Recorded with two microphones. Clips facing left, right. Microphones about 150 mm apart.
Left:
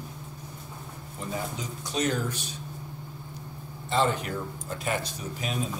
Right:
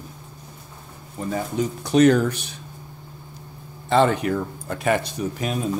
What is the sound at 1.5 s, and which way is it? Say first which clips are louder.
Speech: right 13 dB; 65° right (ahead or behind).